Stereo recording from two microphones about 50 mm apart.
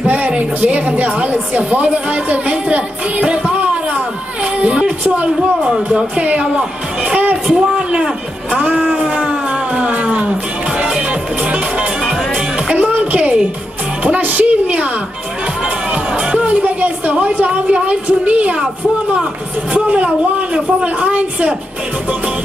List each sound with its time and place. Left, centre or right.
0.0 s a sound: right
0.3 s a woman's voice: right
5.7 s a woman's voice: centre
7.4 s a woman's voice: centre
9.1 s music: right
14.0 s a woman's voice: right
15.9 s music: centre
16.6 s a woman's voice: right
19.7 s a woman's voice: right